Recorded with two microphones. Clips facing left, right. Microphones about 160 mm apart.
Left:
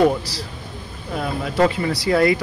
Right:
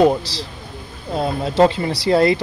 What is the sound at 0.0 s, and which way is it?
Speech, 30° right (ahead or behind).